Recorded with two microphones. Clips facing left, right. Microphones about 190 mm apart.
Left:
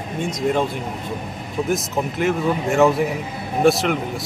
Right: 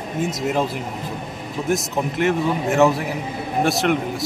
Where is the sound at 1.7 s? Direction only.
Centre (ahead or behind).